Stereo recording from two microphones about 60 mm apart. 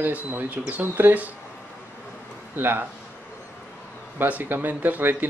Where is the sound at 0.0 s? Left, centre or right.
Right.